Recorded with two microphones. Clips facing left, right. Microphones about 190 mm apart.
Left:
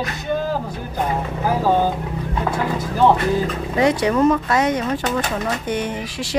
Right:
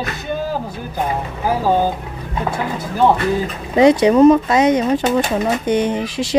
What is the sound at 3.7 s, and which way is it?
Speech, 20° right (ahead or behind).